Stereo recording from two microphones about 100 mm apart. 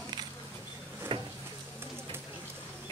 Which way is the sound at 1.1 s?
60° right (ahead or behind).